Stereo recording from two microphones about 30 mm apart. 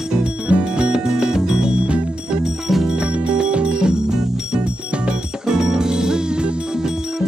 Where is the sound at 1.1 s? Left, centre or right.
Centre.